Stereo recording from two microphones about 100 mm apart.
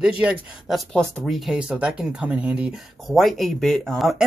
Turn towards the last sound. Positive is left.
turn(degrees=0)  # may be behind; listen again after turning